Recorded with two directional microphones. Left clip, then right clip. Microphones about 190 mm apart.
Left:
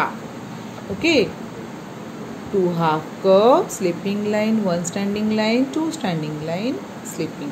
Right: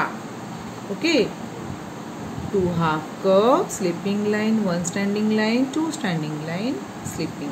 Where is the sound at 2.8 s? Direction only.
15° left (ahead or behind).